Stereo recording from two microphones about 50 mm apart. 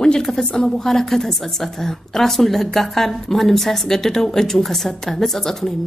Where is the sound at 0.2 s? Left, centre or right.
Centre.